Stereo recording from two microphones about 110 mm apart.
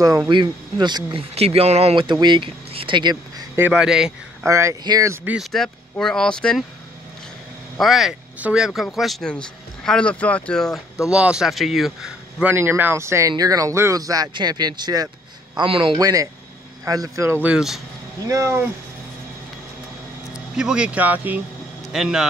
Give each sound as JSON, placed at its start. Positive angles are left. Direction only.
{"t": 0.3, "sound": "speech", "side_deg": -45}
{"t": 1.3, "sound": "speech", "side_deg": -70}
{"t": 2.0, "sound": "speech", "side_deg": -45}
{"t": 3.7, "sound": "speech", "side_deg": -5}
{"t": 4.5, "sound": "speech", "side_deg": -25}
{"t": 5.4, "sound": "speech", "side_deg": 5}
{"t": 7.7, "sound": "speech", "side_deg": 0}
{"t": 12.4, "sound": "speech", "side_deg": -20}
{"t": 16.0, "sound": "speech", "side_deg": -30}
{"t": 17.3, "sound": "speech", "side_deg": -15}
{"t": 18.3, "sound": "speech", "side_deg": -25}
{"t": 20.5, "sound": "speech", "side_deg": -5}
{"t": 21.9, "sound": "speech", "side_deg": -5}